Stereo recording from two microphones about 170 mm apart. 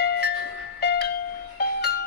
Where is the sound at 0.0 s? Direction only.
75° left (ahead or behind).